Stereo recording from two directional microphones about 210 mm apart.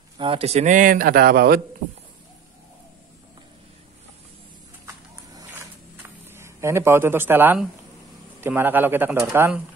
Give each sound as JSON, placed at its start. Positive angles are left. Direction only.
{"t": 0.2, "sound": "a man's voice", "side_deg": -25}
{"t": 6.2, "sound": "a man's voice", "side_deg": -10}